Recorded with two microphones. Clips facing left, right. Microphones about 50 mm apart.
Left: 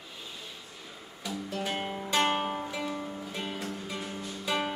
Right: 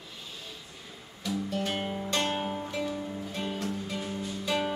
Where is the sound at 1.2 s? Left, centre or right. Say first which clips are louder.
Right 3 dB; centre.